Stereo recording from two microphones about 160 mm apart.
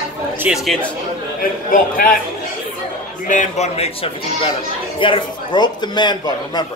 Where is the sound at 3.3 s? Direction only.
50° left (ahead or behind).